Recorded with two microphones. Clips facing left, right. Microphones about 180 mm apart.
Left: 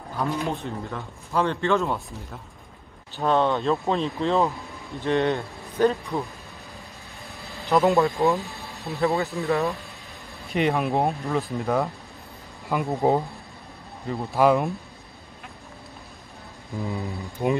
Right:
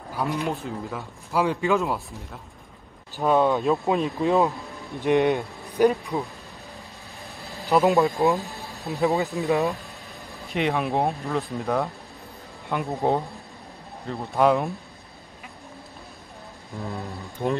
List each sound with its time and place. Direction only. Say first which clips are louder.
0.1 s a sound: even; 10° right (ahead or behind)
0.4 s speech: even; centre (ahead or behind)
3.9 s speech: right 3 dB; 15° right (ahead or behind)
7.3 s vehicle: right 1 dB; centre (ahead or behind)
7.7 s speech: even; centre (ahead or behind)
9.4 s speech: right 2 dB; 20° right (ahead or behind)
10.4 s speech: left 2 dB; centre (ahead or behind)
16.7 s speech: left 3 dB; centre (ahead or behind)